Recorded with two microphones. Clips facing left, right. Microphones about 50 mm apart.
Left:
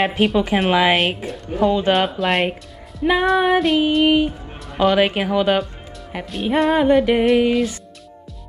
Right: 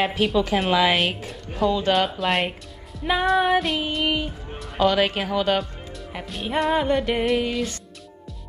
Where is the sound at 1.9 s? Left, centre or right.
Centre.